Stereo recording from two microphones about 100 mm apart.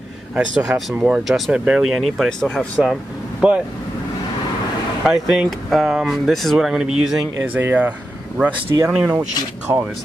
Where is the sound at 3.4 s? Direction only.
10° right (ahead or behind).